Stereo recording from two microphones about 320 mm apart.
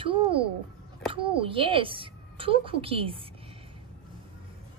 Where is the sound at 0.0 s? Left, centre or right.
Centre.